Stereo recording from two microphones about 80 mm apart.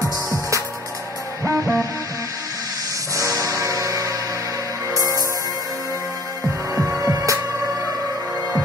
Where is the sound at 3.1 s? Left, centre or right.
Right.